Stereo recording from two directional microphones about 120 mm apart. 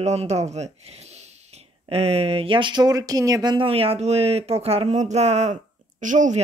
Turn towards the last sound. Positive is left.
turn(degrees=-90)